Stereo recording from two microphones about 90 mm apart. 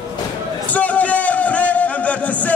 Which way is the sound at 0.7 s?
15° left (ahead or behind).